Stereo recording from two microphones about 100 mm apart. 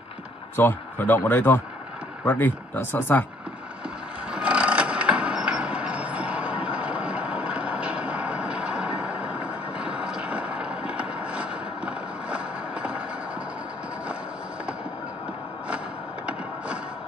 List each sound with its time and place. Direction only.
0.6 s speech: 20° left (ahead or behind)
4.3 s vehicle: 10° right (ahead or behind)
16.3 s music: 10° right (ahead or behind)